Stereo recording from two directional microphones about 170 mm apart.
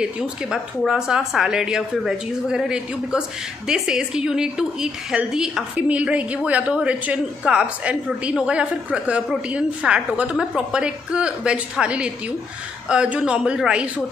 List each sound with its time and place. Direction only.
0.0 s a woman's voice: 5° right (ahead or behind)